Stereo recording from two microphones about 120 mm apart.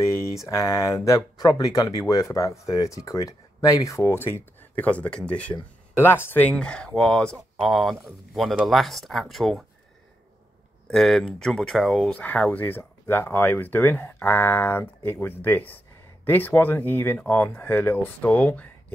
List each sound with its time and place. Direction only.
0.0 s speech: 25° left (ahead or behind); by 9.7 s centre (ahead or behind)
10.9 s speech: 5° left (ahead or behind)
12.1 s speech: 15° left (ahead or behind)